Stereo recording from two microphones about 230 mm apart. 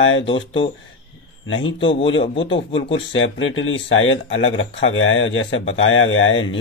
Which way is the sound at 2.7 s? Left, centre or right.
Left.